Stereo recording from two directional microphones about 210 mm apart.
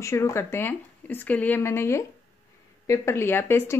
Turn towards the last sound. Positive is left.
turn(degrees=10)  # may be behind; listen again after turning